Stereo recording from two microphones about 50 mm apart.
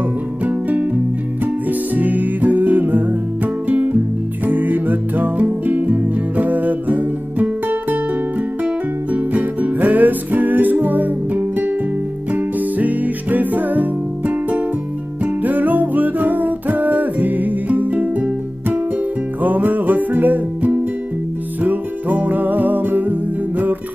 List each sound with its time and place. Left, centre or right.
0.5 s music: right
8.6 s music: right